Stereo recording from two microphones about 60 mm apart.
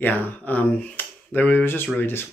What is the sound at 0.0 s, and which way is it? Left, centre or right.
Speech, left.